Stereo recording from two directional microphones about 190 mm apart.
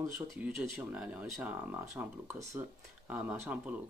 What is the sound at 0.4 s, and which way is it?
Speech, 5° right (ahead or behind).